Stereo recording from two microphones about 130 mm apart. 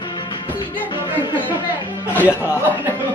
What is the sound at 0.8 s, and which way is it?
Speech, 35° left (ahead or behind).